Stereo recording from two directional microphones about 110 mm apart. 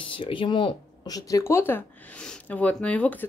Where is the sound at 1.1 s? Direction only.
30° left (ahead or behind).